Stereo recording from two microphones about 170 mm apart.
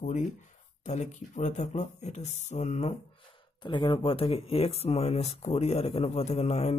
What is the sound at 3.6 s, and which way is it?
Speech, 25° left (ahead or behind).